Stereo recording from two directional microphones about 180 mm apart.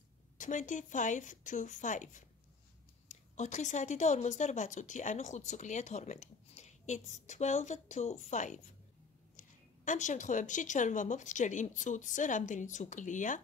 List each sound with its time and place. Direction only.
0.4 s a woman's voice: 45° left (ahead or behind)